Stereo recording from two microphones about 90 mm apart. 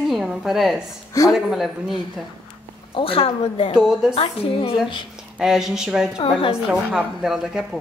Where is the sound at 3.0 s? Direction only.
90° left.